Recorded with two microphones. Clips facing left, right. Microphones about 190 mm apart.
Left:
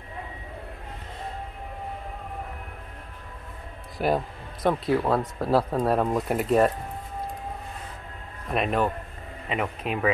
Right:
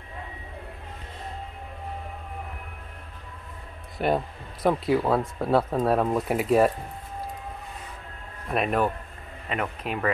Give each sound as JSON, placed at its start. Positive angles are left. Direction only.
{"t": 4.0, "sound": "speech", "side_deg": 0}
{"t": 8.5, "sound": "speech", "side_deg": 0}